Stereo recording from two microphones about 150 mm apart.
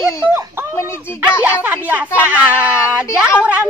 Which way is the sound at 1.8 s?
10° right (ahead or behind).